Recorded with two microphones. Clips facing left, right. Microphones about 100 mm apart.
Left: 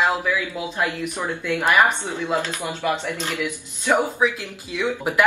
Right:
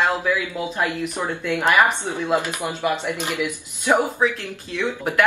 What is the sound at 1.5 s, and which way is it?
Speech, 15° right (ahead or behind).